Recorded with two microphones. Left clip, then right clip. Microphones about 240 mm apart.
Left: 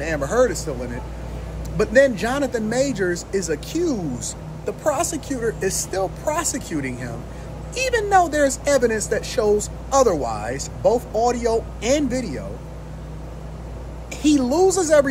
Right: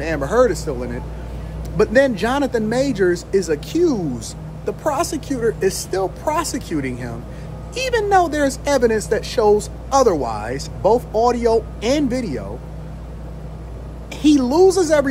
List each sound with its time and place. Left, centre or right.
0.0 s speech: centre
14.2 s speech: centre